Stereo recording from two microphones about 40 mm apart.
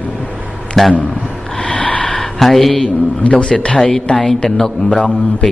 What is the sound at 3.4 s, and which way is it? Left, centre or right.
Speech, left.